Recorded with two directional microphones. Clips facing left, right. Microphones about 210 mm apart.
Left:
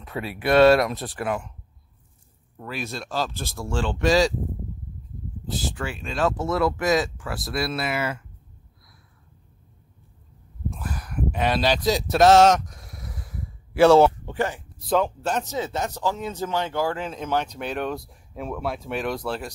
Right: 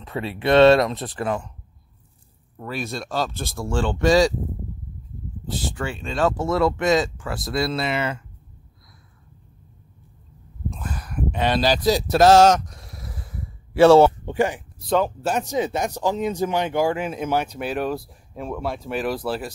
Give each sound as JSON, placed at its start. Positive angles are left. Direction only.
{"t": 0.0, "sound": "speech", "side_deg": -25}
{"t": 1.2, "sound": "speech", "side_deg": 5}
{"t": 2.6, "sound": "speech", "side_deg": 0}
{"t": 5.5, "sound": "speech", "side_deg": 0}
{"t": 5.9, "sound": "speech", "side_deg": -30}
{"t": 6.1, "sound": "speech", "side_deg": 0}
{"t": 6.6, "sound": "speech", "side_deg": -25}
{"t": 7.2, "sound": "speech", "side_deg": 0}
{"t": 7.7, "sound": "speech", "side_deg": -25}
{"t": 10.7, "sound": "a sound", "side_deg": -20}
{"t": 11.4, "sound": "speech", "side_deg": 0}
{"t": 14.2, "sound": "speech", "side_deg": -15}
{"t": 14.8, "sound": "speech", "side_deg": 0}